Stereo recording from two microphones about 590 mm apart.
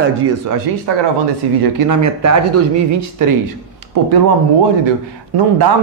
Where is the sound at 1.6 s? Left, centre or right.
Right.